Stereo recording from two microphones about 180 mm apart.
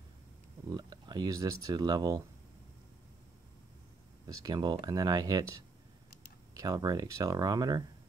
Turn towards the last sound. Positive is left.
turn(degrees=-20)  # may be behind; listen again after turning